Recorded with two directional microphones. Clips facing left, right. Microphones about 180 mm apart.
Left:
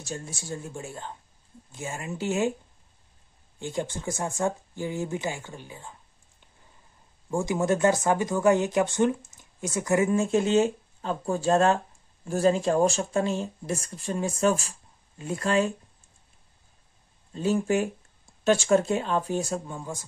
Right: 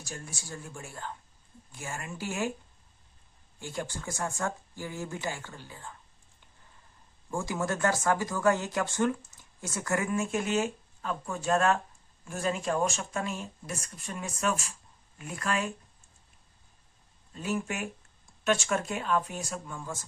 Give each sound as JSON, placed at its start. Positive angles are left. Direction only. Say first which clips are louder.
{"t": 0.0, "sound": "speech", "louder": "left 6 dB", "side_deg": 25}
{"t": 3.5, "sound": "speech", "louder": "left 6 dB", "side_deg": 20}
{"t": 7.2, "sound": "speech", "louder": "left 7 dB", "side_deg": 20}
{"t": 17.3, "sound": "speech", "louder": "left 8 dB", "side_deg": 30}